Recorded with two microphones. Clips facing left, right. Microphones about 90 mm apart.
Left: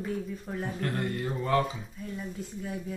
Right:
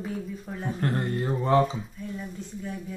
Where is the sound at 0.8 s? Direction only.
30° right (ahead or behind).